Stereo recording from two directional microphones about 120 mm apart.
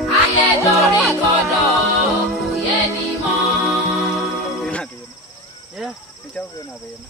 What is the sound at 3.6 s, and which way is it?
Music, centre (ahead or behind).